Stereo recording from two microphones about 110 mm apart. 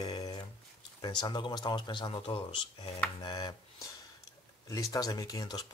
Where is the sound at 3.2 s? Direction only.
40° left (ahead or behind).